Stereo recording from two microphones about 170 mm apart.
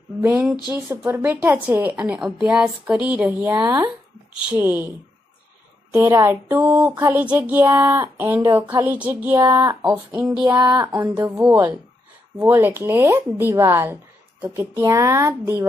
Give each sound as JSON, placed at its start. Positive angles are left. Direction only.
{"t": 0.2, "sound": "a sound", "side_deg": -5}
{"t": 0.8, "sound": "a woman's voice", "side_deg": -15}
{"t": 5.9, "sound": "a woman's voice", "side_deg": -15}